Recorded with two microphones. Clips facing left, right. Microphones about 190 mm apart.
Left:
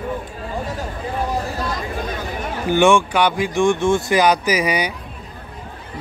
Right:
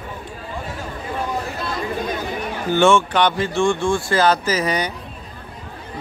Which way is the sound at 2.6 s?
15° left (ahead or behind).